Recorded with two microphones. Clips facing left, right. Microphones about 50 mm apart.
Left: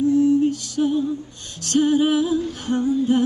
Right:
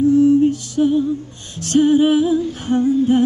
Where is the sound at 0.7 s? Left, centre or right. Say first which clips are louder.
Right 5 dB; centre.